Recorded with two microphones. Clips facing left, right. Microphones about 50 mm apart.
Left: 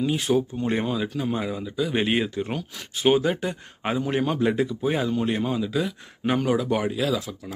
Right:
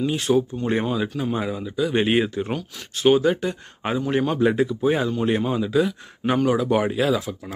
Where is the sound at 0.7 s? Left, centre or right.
Centre.